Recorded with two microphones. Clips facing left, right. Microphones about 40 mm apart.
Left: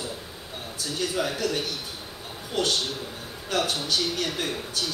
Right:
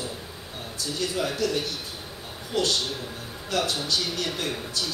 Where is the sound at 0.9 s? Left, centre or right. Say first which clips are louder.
Even; left.